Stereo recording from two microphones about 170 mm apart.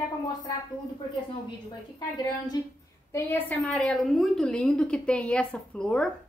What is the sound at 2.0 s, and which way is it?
Speech, 25° left (ahead or behind).